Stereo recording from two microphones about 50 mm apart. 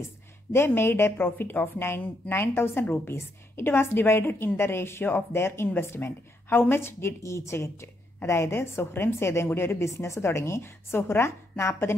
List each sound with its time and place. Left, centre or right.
0.5 s a woman's voice: left
7.2 s a woman's voice: left
8.2 s a woman's voice: left